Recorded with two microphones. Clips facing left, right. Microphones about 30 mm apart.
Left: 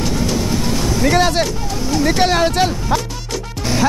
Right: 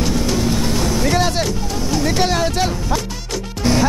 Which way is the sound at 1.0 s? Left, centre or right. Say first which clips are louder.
Left 6 dB; centre.